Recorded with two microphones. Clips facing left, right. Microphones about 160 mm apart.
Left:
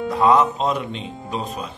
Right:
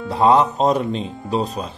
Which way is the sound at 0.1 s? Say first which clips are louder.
Right 2 dB; 30° right (ahead or behind).